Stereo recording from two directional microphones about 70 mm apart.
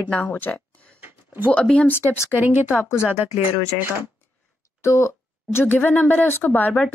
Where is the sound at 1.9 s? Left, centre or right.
Left.